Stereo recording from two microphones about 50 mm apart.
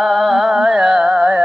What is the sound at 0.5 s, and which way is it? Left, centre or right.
Carnatic music, centre.